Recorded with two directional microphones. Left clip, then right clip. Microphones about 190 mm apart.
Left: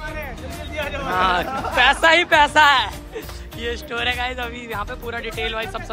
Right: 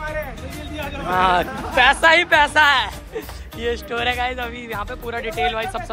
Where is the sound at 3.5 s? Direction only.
5° left (ahead or behind).